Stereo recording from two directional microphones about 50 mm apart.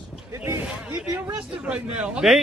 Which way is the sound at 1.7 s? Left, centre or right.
Right.